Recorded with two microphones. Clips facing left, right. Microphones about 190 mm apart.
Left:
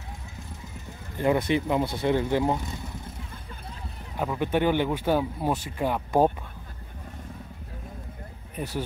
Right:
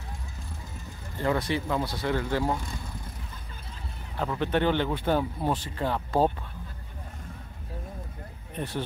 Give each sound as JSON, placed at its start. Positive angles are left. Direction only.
{"t": 1.1, "sound": "speech", "side_deg": 15}
{"t": 4.2, "sound": "speech", "side_deg": 10}
{"t": 8.5, "sound": "speech", "side_deg": 10}